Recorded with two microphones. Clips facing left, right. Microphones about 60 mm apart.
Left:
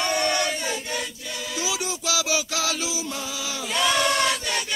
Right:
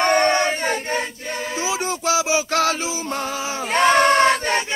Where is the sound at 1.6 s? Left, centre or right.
Right.